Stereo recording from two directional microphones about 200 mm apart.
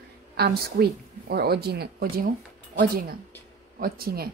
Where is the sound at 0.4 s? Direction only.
55° right (ahead or behind).